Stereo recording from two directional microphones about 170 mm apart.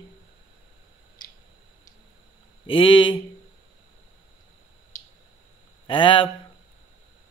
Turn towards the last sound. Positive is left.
turn(degrees=30)  # may be behind; listen again after turning